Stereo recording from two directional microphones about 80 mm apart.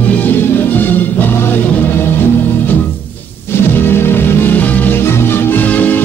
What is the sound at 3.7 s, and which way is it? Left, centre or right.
Music, left.